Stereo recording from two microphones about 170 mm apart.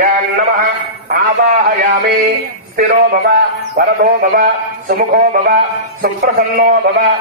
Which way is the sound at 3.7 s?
60° right (ahead or behind).